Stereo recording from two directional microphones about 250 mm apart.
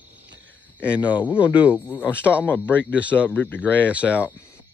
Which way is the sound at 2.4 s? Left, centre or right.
Centre.